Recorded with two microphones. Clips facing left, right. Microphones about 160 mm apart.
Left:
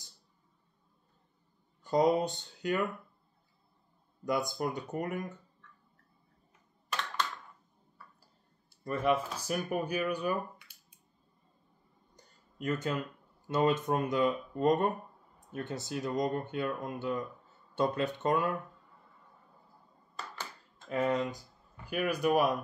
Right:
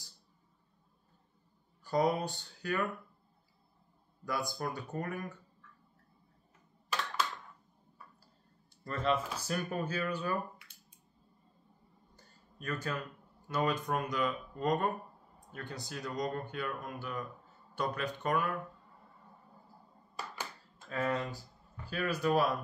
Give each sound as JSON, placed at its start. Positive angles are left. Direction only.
{"t": 1.8, "sound": "speech", "side_deg": 20}
{"t": 4.2, "sound": "speech", "side_deg": 20}
{"t": 5.6, "sound": "tick-tock", "side_deg": -10}
{"t": 6.9, "sound": "a sound", "side_deg": -5}
{"t": 8.8, "sound": "speech", "side_deg": 15}
{"t": 12.2, "sound": "a sound", "side_deg": 20}
{"t": 13.5, "sound": "speech", "side_deg": 25}
{"t": 20.2, "sound": "a sound", "side_deg": -10}
{"t": 20.9, "sound": "speech", "side_deg": 15}